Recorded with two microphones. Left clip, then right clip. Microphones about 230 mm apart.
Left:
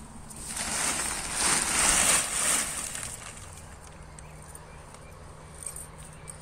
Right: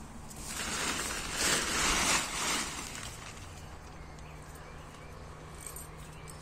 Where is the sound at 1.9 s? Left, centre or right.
Left.